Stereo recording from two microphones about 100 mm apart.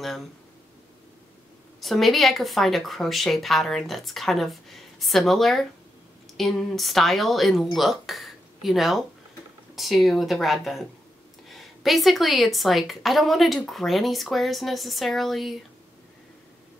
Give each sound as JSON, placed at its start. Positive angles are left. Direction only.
{"t": 1.8, "sound": "a woman's voice", "side_deg": 0}